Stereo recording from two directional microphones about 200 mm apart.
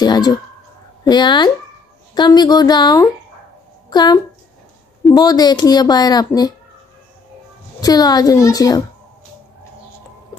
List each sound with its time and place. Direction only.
0.0 s speech: 20° left (ahead or behind)
7.8 s a woman's voice: 20° left (ahead or behind)